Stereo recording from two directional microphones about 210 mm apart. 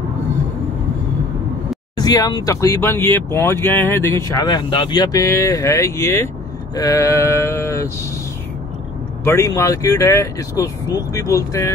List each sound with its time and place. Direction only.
2.0 s speech: 20° left (ahead or behind)
9.2 s speech: 15° left (ahead or behind)